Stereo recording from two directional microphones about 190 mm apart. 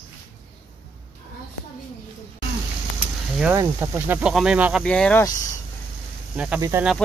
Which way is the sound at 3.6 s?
10° right (ahead or behind).